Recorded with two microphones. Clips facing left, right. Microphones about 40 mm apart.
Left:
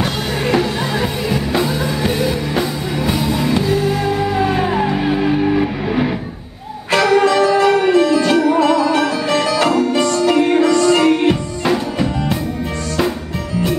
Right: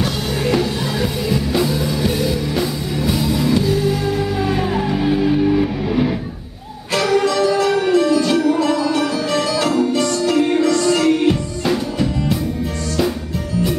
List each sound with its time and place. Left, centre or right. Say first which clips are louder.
0.0 s music: left 1 dB; left